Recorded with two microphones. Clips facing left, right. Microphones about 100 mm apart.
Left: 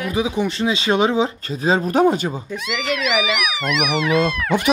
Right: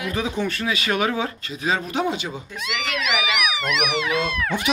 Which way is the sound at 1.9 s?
45° left (ahead or behind).